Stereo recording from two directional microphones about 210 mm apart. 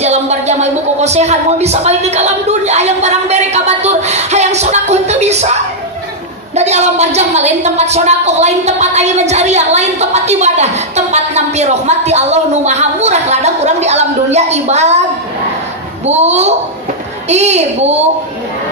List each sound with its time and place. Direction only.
0.0 s a woman's voice: 30° right (ahead or behind)
16.1 s a woman's voice: 30° right (ahead or behind)